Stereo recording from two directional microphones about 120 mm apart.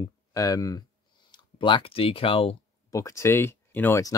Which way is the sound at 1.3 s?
45° left (ahead or behind).